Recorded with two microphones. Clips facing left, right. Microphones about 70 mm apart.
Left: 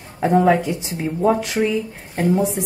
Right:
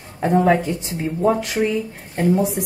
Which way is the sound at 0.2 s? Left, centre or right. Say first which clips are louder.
Left 1 dB; centre.